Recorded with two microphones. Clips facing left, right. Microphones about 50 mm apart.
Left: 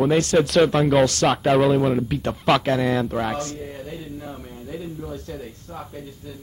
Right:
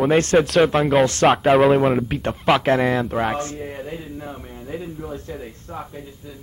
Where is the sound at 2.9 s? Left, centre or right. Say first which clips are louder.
Right 2 dB; centre.